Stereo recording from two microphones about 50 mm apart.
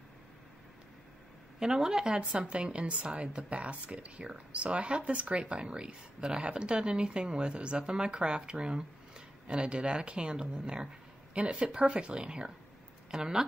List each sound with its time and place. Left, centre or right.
1.6 s a woman's voice: centre